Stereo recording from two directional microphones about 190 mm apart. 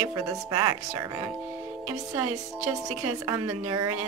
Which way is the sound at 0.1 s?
20° right (ahead or behind).